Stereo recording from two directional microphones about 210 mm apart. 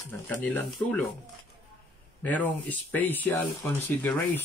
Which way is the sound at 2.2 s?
5° left (ahead or behind).